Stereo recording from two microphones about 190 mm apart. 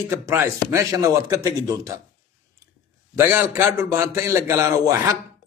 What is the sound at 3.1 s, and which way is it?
A man's voice, 10° right (ahead or behind).